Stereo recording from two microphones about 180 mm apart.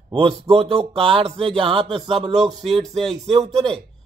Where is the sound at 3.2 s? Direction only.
35° right (ahead or behind).